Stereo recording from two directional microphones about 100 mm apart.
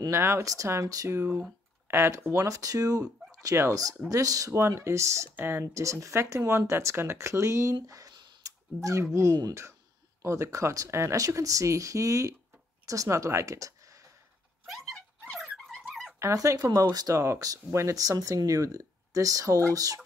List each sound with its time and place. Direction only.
0.1 s speech: 25° right (ahead or behind)
4.6 s speech: 25° right (ahead or behind)
8.4 s a sound: 35° right (ahead or behind)
9.1 s speech: 30° right (ahead or behind)
14.7 s dog: centre (ahead or behind)
16.2 s speech: 30° right (ahead or behind)